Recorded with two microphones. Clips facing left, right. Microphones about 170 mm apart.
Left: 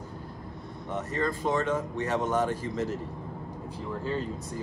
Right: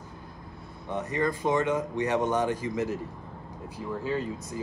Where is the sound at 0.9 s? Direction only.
15° right (ahead or behind).